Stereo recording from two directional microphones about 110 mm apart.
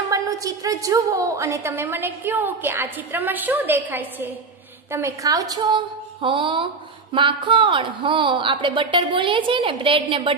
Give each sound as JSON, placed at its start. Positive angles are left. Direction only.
{"t": 0.1, "sound": "a woman's voice", "side_deg": -30}
{"t": 4.9, "sound": "a woman's voice", "side_deg": -30}
{"t": 5.6, "sound": "speech", "side_deg": -50}